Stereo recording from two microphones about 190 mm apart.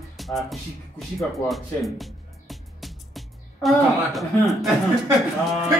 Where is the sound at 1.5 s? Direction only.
Centre (ahead or behind).